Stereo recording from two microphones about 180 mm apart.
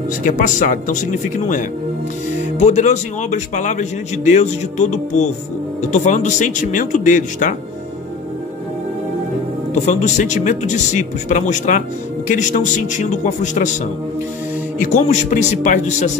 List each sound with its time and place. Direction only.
0.2 s a man's voice: 45° left (ahead or behind)
9.8 s speech: 40° left (ahead or behind)
14.8 s speech: 45° left (ahead or behind)